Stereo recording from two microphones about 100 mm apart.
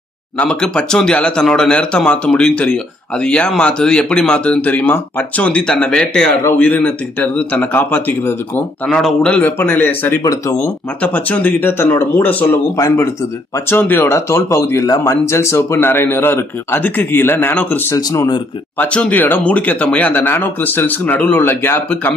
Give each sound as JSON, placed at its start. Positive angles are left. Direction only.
{"t": 0.4, "sound": "speech", "side_deg": 10}
{"t": 8.8, "sound": "a man's voice", "side_deg": 5}
{"t": 9.2, "sound": "speech", "side_deg": 15}
{"t": 10.2, "sound": "speech", "side_deg": 30}
{"t": 11.0, "sound": "speech", "side_deg": 15}
{"t": 13.7, "sound": "speech", "side_deg": 25}
{"t": 17.9, "sound": "speech", "side_deg": 35}
{"t": 18.9, "sound": "speech", "side_deg": 10}